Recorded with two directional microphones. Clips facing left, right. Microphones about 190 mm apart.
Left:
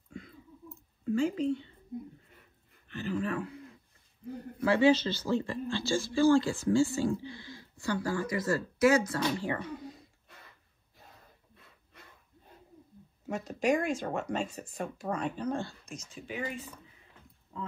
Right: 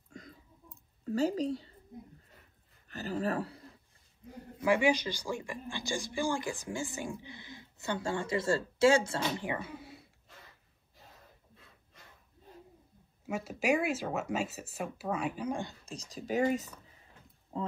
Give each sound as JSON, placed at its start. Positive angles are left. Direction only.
{"t": 0.1, "sound": "a sound", "side_deg": -40}
{"t": 1.1, "sound": "speech", "side_deg": -40}
{"t": 2.9, "sound": "speech", "side_deg": -40}
{"t": 4.6, "sound": "speech", "side_deg": -15}
{"t": 9.4, "sound": "speech", "side_deg": -15}
{"t": 13.2, "sound": "speech", "side_deg": -10}
{"t": 15.9, "sound": "speech", "side_deg": -35}